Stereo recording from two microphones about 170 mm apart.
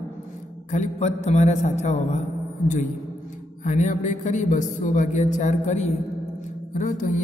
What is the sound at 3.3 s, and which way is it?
A man's voice, 45° left (ahead or behind).